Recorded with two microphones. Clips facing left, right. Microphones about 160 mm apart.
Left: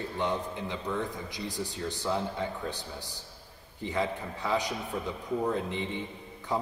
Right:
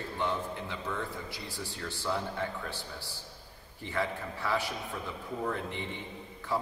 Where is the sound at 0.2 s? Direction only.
20° left (ahead or behind).